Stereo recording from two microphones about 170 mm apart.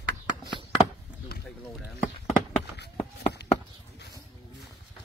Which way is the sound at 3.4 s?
75° left (ahead or behind).